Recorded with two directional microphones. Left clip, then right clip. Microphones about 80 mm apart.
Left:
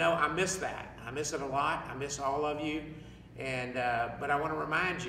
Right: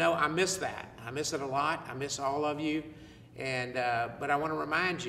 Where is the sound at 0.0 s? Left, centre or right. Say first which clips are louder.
Right 1 dB; left.